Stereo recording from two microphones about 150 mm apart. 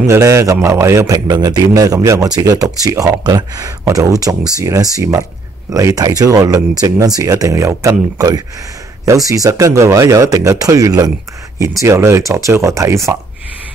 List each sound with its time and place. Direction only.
0.0 s speech: 20° right (ahead or behind)